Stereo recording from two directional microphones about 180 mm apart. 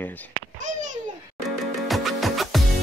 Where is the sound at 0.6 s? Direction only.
40° right (ahead or behind).